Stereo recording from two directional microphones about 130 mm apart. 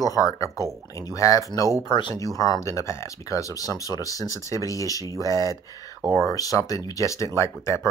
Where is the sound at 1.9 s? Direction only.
35° left (ahead or behind).